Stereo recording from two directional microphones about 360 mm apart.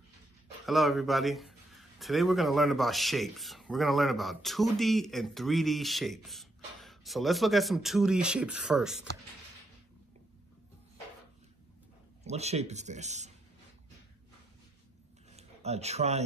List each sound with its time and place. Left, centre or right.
0.7 s speech: centre
12.3 s speech: centre
15.3 s speech: centre